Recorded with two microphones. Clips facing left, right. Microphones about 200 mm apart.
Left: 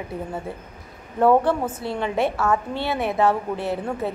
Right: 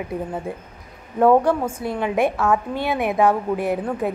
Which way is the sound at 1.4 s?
10° right (ahead or behind).